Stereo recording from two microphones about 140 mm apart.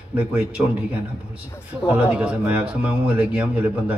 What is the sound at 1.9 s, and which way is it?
A man's voice, 10° right (ahead or behind).